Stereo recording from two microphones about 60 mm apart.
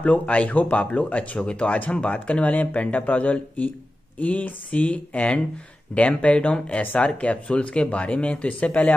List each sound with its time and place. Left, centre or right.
0.0 s speech: left